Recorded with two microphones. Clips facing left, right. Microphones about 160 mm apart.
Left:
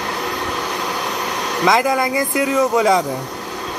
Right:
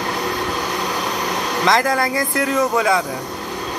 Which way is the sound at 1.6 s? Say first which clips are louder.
Left 2 dB; 15° left (ahead or behind).